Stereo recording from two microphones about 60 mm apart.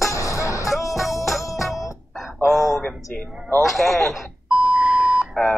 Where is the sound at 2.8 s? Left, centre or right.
Centre.